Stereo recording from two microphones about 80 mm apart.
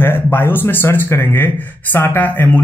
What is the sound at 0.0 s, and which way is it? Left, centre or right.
A man's voice, left.